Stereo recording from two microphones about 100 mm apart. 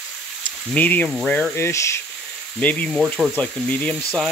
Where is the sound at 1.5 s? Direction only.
25° left (ahead or behind).